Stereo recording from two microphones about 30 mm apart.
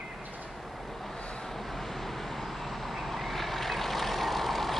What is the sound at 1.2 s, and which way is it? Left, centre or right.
Vehicle, left.